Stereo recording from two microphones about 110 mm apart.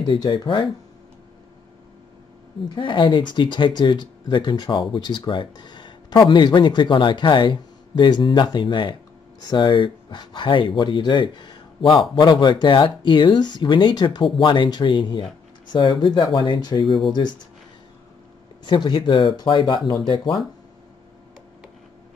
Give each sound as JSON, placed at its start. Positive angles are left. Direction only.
{"t": 0.0, "sound": "speech", "side_deg": 45}
{"t": 2.7, "sound": "speech", "side_deg": 50}
{"t": 18.7, "sound": "speech", "side_deg": 45}